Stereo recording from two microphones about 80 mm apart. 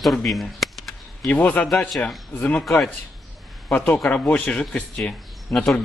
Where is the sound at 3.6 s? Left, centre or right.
Left.